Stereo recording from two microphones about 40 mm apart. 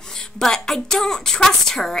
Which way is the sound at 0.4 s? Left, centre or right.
Centre.